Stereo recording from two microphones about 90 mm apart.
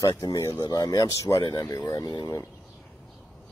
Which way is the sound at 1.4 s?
50° left (ahead or behind).